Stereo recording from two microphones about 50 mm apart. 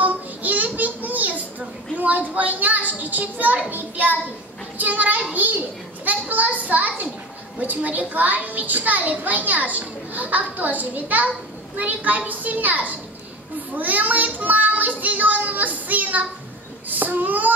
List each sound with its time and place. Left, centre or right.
0.0 s child singing: right
2.0 s a child's voice: right